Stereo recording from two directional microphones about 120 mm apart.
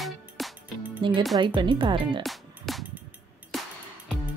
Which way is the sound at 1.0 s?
45° right (ahead or behind).